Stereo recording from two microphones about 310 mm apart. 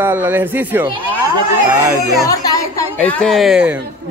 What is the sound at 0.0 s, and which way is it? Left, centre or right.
A woman's voice, centre.